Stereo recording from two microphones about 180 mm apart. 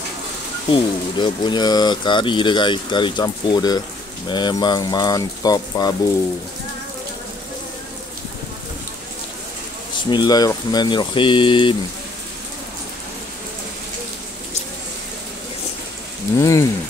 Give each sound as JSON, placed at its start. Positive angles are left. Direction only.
{"t": 0.7, "sound": "speech", "side_deg": 25}
{"t": 10.0, "sound": "speech", "side_deg": 25}
{"t": 16.3, "sound": "speech", "side_deg": 15}